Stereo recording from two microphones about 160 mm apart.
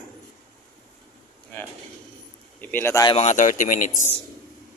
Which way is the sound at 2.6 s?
10° left (ahead or behind).